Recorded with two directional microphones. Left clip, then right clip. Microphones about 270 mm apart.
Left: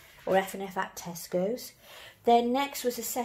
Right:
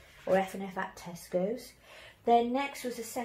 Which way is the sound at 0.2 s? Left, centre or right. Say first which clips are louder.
Left 2 dB; left.